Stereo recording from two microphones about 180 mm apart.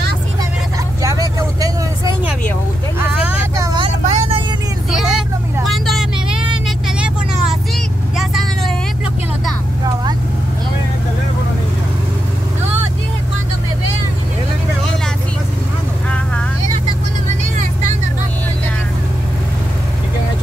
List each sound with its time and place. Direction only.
1.0 s vehicle: 20° right (ahead or behind)
3.5 s vehicle: 15° right (ahead or behind)
4.0 s vehicle: 35° right (ahead or behind)
4.9 s vehicle: centre (ahead or behind)